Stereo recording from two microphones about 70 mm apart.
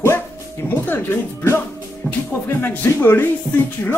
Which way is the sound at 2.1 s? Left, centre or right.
Left.